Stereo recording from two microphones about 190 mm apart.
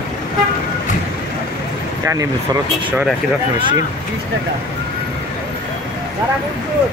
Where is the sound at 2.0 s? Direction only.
15° right (ahead or behind).